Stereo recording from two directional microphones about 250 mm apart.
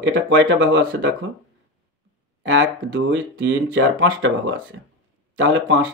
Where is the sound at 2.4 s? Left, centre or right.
Right.